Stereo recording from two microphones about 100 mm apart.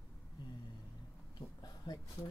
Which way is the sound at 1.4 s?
40° left (ahead or behind).